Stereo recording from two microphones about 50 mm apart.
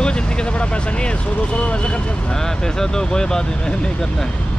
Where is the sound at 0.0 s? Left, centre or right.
Centre.